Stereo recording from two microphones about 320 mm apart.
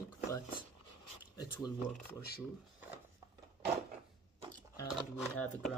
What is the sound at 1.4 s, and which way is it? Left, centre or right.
Speech, centre.